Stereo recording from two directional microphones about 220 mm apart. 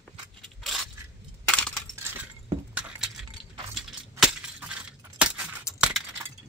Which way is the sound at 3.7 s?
Centre (ahead or behind).